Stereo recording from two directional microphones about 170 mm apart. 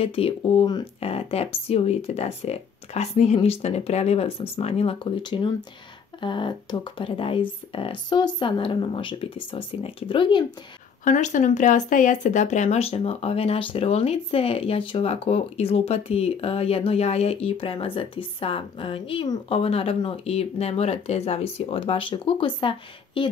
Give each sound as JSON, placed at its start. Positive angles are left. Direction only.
{"t": 0.0, "sound": "speech", "side_deg": 35}
{"t": 11.1, "sound": "speech", "side_deg": 45}